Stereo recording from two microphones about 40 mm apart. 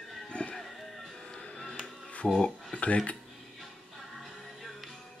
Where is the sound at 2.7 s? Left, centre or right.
Left.